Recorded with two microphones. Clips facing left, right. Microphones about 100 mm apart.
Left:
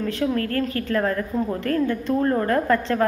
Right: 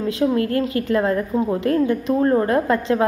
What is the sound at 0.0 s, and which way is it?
A woman's voice, 20° right (ahead or behind).